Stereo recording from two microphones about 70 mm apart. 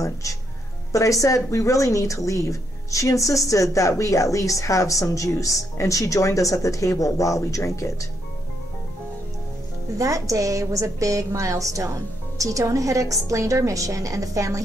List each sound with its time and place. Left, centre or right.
0.0 s a woman's voice: left
9.9 s a woman's voice: right